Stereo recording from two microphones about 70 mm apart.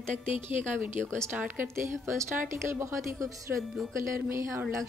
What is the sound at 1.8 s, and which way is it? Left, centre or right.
Speech, right.